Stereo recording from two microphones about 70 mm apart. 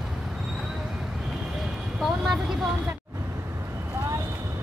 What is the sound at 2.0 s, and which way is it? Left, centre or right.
Vehicle, centre.